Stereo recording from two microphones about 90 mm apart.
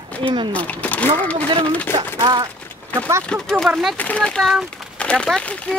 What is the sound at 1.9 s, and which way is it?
Speech, 55° right (ahead or behind).